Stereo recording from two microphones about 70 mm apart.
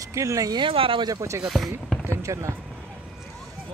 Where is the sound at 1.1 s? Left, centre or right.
Right.